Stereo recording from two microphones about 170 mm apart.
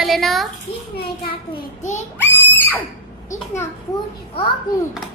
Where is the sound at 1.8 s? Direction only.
45° left (ahead or behind).